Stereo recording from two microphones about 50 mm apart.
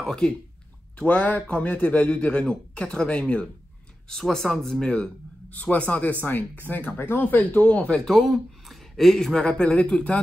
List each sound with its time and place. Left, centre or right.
0.0 s speech: centre
0.9 s a man's voice: left
4.1 s speech: centre
5.5 s speech: left
8.1 s speech: centre; by 10.2 s left